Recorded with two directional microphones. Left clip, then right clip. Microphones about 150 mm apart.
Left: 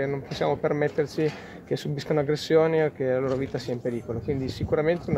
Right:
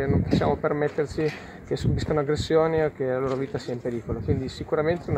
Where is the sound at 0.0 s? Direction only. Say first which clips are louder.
Right 2 dB; 5° left (ahead or behind).